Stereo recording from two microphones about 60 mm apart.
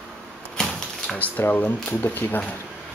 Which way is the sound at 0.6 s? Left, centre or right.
Centre.